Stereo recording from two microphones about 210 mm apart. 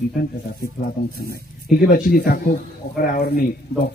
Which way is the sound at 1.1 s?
45° left (ahead or behind).